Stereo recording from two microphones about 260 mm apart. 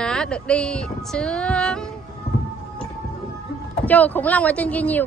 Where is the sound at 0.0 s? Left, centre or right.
Centre.